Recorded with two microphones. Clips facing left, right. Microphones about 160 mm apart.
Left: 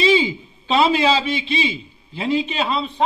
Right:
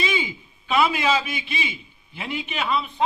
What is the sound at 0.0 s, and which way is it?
A man's voice, 30° left (ahead or behind).